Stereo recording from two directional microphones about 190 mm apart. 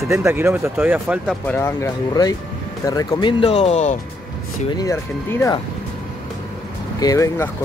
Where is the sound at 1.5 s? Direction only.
10° left (ahead or behind).